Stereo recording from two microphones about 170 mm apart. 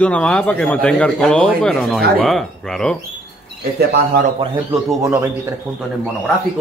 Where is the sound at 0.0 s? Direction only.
5° left (ahead or behind).